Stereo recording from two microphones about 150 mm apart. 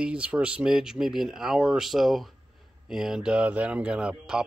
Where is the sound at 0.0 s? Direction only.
5° right (ahead or behind).